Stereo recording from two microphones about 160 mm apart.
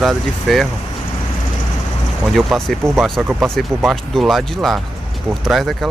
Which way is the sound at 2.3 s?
Centre (ahead or behind).